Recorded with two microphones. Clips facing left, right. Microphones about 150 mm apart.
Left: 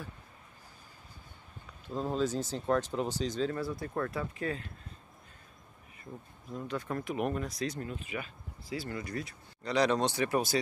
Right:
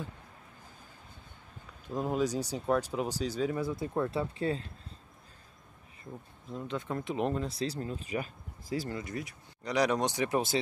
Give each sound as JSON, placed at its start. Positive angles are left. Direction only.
{"t": 2.0, "sound": "speech", "side_deg": -15}
{"t": 4.1, "sound": "speech", "side_deg": -30}
{"t": 6.5, "sound": "speech", "side_deg": -20}
{"t": 8.9, "sound": "speech", "side_deg": -20}